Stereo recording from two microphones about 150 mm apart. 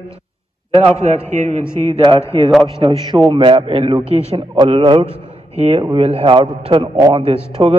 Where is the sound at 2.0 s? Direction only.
35° right (ahead or behind).